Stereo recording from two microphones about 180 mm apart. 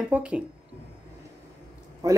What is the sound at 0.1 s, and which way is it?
Speech, 5° right (ahead or behind).